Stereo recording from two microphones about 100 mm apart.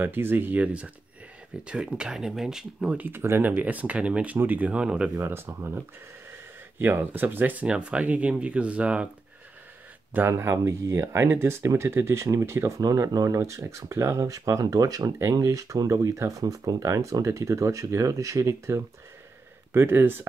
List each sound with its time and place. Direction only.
0.0 s speech: 20° right (ahead or behind)
5.2 s speech: 25° right (ahead or behind)
10.1 s speech: 25° right (ahead or behind)